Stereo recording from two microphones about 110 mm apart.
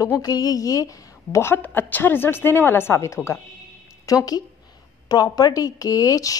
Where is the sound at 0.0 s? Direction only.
30° left (ahead or behind).